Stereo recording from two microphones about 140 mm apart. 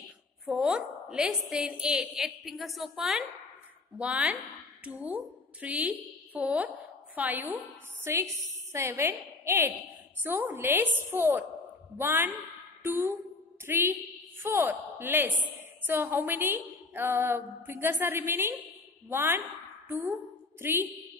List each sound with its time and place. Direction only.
0.5 s a woman's voice: 5° right (ahead or behind)